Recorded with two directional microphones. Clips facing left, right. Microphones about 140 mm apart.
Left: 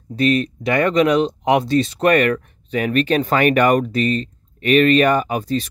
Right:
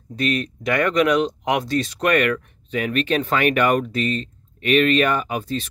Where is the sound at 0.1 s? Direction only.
35° left (ahead or behind).